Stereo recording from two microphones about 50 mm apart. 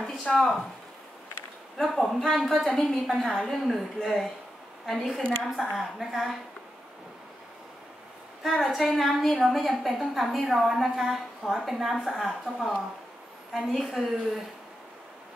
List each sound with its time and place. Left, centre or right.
0.3 s speech: left
1.8 s a woman's voice: centre
5.4 s a woman's voice: centre
8.4 s a woman's voice: centre